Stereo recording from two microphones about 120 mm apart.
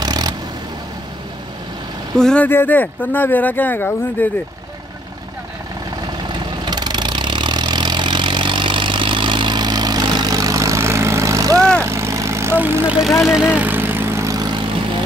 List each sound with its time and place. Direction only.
0.0 s vehicle: 35° right (ahead or behind)
2.1 s speech: 5° left (ahead or behind)
6.6 s vehicle: 35° right (ahead or behind)